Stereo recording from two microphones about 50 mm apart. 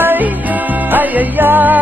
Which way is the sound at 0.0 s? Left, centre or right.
Right.